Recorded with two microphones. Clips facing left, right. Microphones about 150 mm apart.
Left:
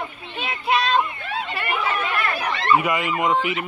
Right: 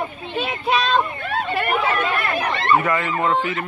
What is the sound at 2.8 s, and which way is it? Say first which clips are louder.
Speech: right 1 dB; 15° left (ahead or behind).